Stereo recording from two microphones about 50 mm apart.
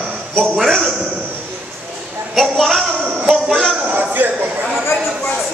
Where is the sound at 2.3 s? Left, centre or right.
Centre.